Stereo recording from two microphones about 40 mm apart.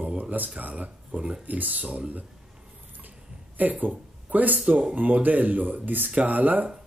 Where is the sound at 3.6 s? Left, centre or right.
Right.